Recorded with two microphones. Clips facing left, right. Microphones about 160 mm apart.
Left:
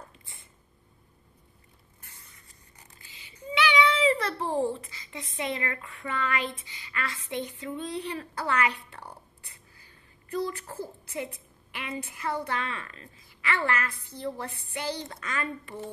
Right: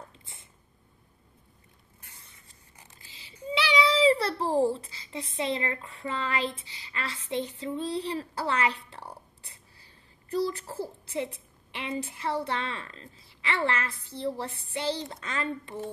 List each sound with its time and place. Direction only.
3.1 s a sound: 35° right (ahead or behind)
5.3 s a woman's voice: 30° right (ahead or behind)
9.8 s a woman's voice: 30° right (ahead or behind)